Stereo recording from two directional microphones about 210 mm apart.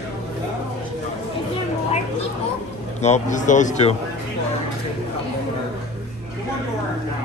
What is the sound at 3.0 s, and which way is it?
Speech, 35° left (ahead or behind).